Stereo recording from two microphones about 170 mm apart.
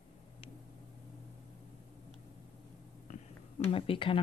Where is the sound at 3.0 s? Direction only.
40° left (ahead or behind).